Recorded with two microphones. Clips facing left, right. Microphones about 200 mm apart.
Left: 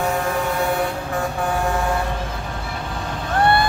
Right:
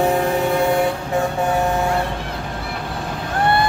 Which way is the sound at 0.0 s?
30° right (ahead or behind).